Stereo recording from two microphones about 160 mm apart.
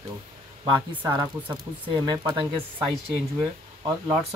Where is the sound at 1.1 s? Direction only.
25° right (ahead or behind).